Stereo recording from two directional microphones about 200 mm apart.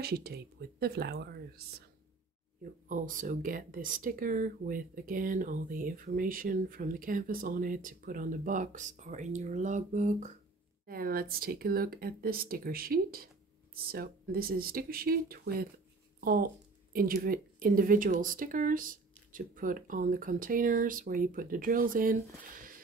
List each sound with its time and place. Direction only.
0.0 s speech: 50° right (ahead or behind)
2.9 s speech: 40° right (ahead or behind)